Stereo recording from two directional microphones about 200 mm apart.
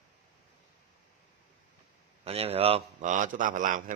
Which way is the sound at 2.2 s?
30° right (ahead or behind).